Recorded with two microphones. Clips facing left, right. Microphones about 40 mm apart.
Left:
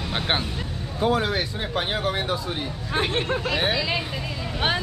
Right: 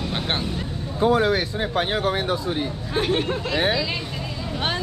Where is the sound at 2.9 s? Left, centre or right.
Centre.